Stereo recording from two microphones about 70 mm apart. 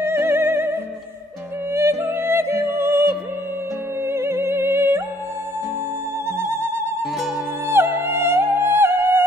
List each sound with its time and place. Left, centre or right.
0.0 s music: right
1.7 s music: right
6.3 s music: right